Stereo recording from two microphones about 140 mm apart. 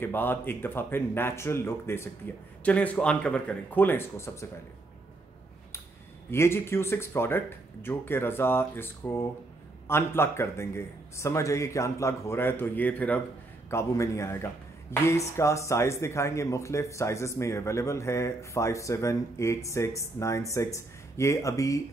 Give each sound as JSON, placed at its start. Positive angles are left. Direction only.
{"t": 0.0, "sound": "speech", "side_deg": 15}
{"t": 6.3, "sound": "speech", "side_deg": 15}